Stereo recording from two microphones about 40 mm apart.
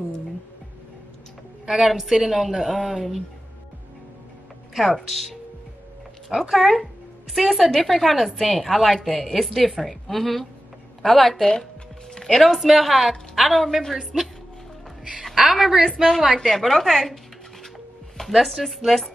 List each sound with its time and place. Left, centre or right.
1.7 s a woman's voice: centre
4.7 s a woman's voice: centre
6.5 s a woman's voice: centre
14.1 s a woman's voice: centre
15.3 s a woman's voice: centre
15.9 s a woman's voice: centre
18.3 s a woman's voice: centre